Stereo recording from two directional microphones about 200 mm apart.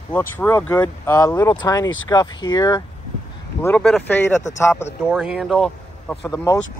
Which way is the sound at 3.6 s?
5° left (ahead or behind).